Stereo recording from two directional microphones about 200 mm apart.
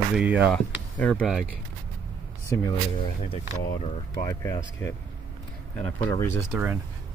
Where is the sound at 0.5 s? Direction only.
5° left (ahead or behind).